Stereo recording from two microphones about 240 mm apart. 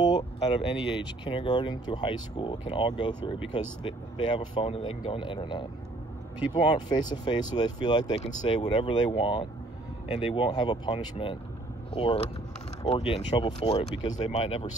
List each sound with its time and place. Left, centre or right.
0.2 s speech: left